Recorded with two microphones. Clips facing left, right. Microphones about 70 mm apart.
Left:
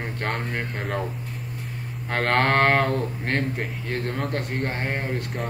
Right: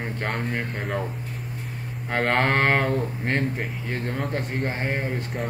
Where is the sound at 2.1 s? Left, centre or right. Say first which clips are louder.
Left 1 dB; centre.